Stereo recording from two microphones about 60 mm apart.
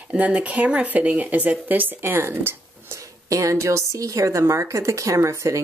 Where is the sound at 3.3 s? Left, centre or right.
Right.